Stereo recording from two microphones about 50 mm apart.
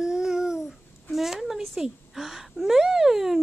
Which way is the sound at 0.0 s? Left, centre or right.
Centre.